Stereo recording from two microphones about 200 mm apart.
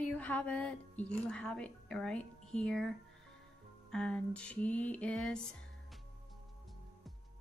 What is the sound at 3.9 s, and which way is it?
Music, 5° left (ahead or behind).